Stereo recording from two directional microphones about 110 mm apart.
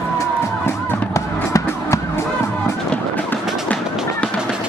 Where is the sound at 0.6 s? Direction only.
25° left (ahead or behind).